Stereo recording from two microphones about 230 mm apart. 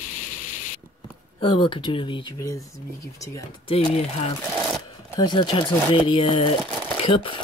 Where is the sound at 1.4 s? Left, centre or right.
Left.